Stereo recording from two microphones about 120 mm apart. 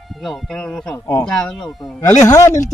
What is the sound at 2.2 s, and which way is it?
Speech, 25° left (ahead or behind).